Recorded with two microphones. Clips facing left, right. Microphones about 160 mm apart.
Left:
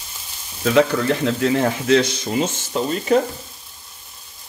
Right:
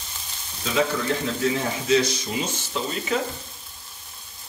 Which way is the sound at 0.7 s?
65° left (ahead or behind).